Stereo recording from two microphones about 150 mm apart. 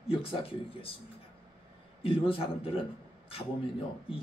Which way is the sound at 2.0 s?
35° left (ahead or behind).